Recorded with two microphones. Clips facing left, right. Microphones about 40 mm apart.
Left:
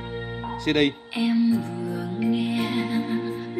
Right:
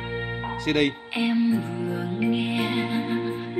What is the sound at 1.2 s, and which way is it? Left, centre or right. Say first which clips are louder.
Music: left 1 dB; right.